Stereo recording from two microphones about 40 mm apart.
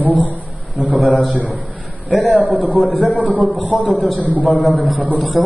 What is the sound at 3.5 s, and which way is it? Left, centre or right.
A man's voice, left.